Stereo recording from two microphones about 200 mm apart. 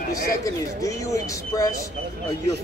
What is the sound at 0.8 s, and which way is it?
Speech, 15° left (ahead or behind).